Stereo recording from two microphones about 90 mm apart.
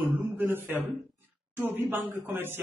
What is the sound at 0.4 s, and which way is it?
Speech, 25° right (ahead or behind).